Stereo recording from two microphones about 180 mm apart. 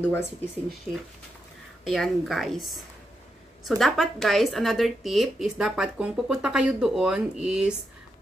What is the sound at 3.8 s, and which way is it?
Speech, centre (ahead or behind).